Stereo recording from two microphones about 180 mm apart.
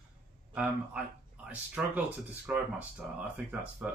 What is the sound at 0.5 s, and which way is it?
Speech, 5° right (ahead or behind).